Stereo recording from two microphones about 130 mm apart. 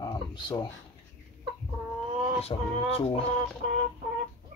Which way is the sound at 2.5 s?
45° left (ahead or behind).